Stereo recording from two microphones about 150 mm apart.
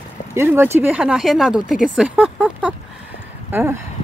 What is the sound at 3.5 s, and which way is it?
Speech, 15° right (ahead or behind).